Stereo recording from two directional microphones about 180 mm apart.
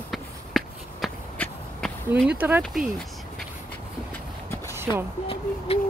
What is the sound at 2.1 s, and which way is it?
Speech, 10° right (ahead or behind).